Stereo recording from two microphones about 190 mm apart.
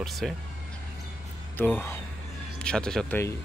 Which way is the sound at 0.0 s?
Centre (ahead or behind).